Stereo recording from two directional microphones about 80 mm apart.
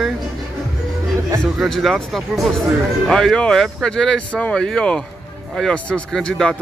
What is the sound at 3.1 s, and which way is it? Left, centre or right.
Speech, centre.